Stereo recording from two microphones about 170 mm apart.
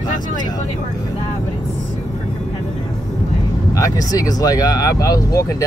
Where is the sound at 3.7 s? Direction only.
20° left (ahead or behind).